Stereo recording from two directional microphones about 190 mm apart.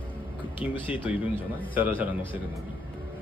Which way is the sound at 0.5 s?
25° left (ahead or behind).